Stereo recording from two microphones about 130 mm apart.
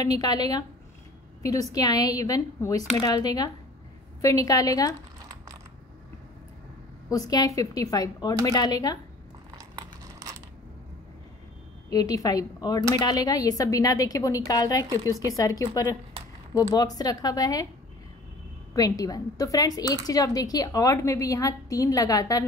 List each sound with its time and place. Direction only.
0.0 s a woman's voice: 30° left (ahead or behind)
7.1 s a woman's voice: 30° left (ahead or behind)
11.9 s a woman's voice: 30° left (ahead or behind)
18.7 s a woman's voice: 30° left (ahead or behind)